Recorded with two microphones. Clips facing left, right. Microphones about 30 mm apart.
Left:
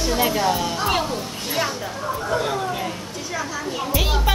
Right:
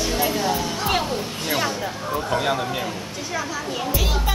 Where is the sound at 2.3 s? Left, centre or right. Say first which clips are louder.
Right 1 dB; centre.